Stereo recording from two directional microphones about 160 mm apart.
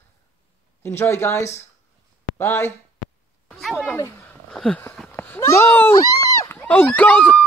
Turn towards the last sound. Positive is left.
turn(degrees=10)  # may be behind; listen again after turning